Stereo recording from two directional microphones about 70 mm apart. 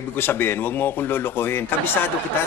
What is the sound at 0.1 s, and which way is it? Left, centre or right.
A man's voice, left.